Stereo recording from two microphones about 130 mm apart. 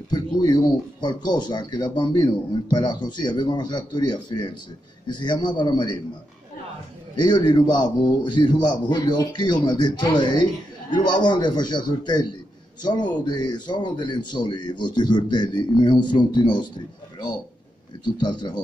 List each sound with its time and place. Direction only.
0.1 s speech: 30° left (ahead or behind)
7.2 s speech: 35° left (ahead or behind)